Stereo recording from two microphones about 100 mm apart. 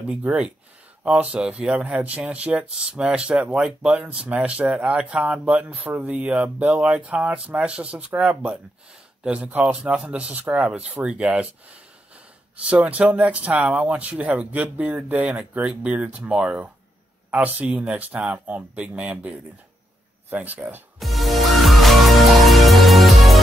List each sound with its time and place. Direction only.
0.1 s speech: 15° right (ahead or behind)
21.0 s music: centre (ahead or behind)